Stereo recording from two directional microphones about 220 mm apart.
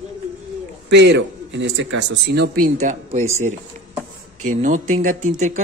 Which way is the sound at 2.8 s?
30° right (ahead or behind).